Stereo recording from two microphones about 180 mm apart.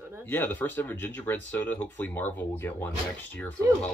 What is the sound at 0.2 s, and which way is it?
Speech, 10° left (ahead or behind).